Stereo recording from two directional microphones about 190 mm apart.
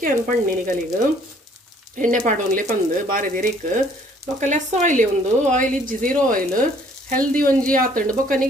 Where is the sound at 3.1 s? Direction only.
45° right (ahead or behind).